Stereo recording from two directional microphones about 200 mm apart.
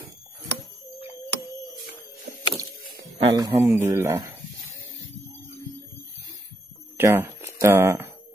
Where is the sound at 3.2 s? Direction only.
20° right (ahead or behind).